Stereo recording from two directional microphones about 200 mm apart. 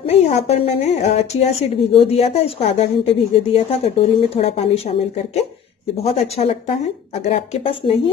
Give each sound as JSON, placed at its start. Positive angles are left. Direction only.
{"t": 0.0, "sound": "a woman's voice", "side_deg": 35}